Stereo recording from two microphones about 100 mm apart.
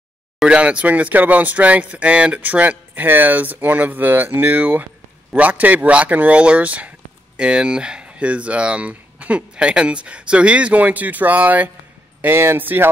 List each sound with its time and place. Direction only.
0.4 s speech: 10° right (ahead or behind)